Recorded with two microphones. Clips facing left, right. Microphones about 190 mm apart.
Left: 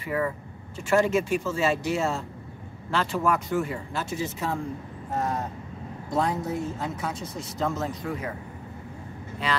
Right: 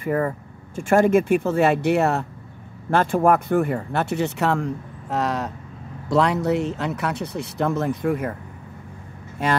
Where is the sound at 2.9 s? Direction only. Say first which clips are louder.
Right 7 dB; 50° right (ahead or behind).